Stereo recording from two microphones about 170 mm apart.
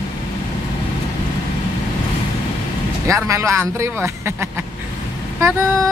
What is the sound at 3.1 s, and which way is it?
A man's voice, 15° right (ahead or behind).